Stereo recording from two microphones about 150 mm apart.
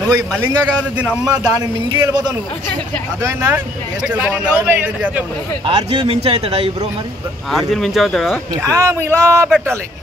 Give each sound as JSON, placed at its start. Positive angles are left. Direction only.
{"t": 0.1, "sound": "a man's voice", "side_deg": -25}
{"t": 0.9, "sound": "a man's voice", "side_deg": -5}
{"t": 1.2, "sound": "a man's voice", "side_deg": -25}
{"t": 4.0, "sound": "a man's voice", "side_deg": -10}
{"t": 5.7, "sound": "speech", "side_deg": -35}
{"t": 7.5, "sound": "speech", "side_deg": 0}
{"t": 8.5, "sound": "a man's voice", "side_deg": -20}